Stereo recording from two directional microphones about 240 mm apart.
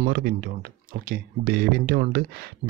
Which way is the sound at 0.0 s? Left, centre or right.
Right.